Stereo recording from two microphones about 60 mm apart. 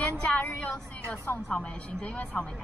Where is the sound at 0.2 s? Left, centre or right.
Left.